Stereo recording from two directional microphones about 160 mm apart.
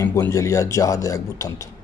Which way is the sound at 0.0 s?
20° left (ahead or behind).